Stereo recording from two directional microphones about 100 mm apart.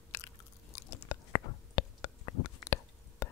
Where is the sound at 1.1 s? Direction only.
40° left (ahead or behind).